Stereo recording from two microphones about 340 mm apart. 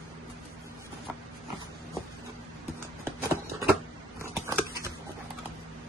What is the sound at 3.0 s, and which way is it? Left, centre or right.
Horse, centre.